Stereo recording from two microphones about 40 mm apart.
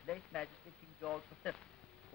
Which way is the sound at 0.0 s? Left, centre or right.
Centre.